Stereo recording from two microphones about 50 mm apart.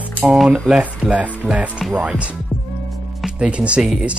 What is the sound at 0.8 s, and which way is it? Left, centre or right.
Speech, right.